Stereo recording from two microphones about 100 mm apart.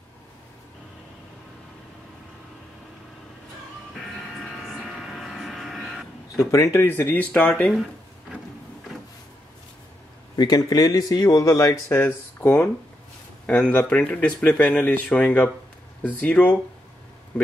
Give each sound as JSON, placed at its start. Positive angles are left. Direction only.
{"t": 4.0, "sound": "music", "side_deg": 0}
{"t": 4.8, "sound": "a sound", "side_deg": 0}
{"t": 6.5, "sound": "speech", "side_deg": 30}
{"t": 10.3, "sound": "speech", "side_deg": 40}
{"t": 11.9, "sound": "speech", "side_deg": 25}